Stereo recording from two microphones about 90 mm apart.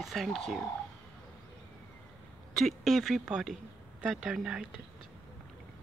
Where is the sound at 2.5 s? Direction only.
Centre (ahead or behind).